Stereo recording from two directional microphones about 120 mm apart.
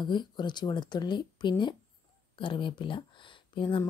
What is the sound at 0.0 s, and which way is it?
A woman's voice, 40° left (ahead or behind).